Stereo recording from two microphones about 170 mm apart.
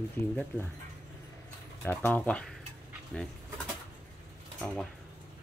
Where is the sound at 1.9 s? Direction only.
10° left (ahead or behind).